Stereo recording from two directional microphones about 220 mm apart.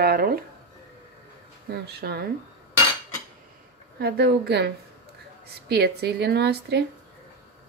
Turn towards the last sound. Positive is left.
turn(degrees=-50)  # may be behind; listen again after turning